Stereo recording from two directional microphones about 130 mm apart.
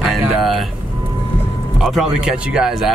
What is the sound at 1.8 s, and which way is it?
Speech, 5° right (ahead or behind).